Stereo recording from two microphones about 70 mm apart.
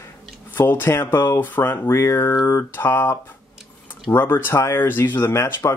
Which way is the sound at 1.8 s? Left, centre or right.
Left.